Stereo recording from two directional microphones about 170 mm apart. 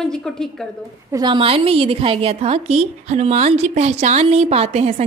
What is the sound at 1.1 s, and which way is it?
A woman's voice, 25° right (ahead or behind).